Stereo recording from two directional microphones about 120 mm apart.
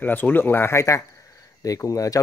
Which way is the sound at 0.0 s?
15° left (ahead or behind).